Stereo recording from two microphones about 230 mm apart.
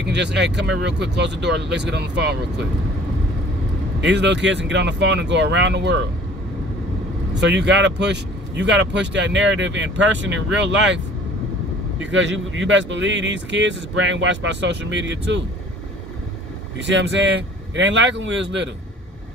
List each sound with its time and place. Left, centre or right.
0.0 s speech: right
4.0 s speech: right
7.3 s speech: right
12.0 s speech: right
16.7 s speech: right